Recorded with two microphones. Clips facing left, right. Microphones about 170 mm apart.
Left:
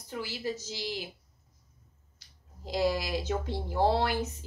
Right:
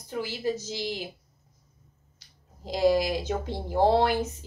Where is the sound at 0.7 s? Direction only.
20° right (ahead or behind).